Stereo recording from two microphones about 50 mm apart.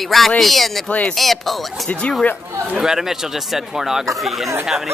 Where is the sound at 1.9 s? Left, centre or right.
Centre.